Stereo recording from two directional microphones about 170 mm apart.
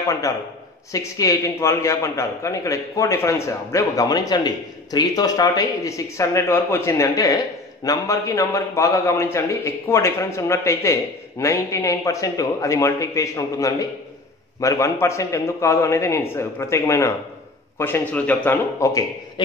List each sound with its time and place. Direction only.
0.9 s a man's voice: 20° left (ahead or behind)